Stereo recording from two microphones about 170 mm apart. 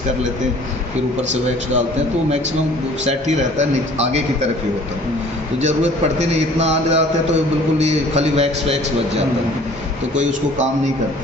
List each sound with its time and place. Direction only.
3.1 s a man's voice: 40° right (ahead or behind)
6.1 s a man's voice: 40° right (ahead or behind)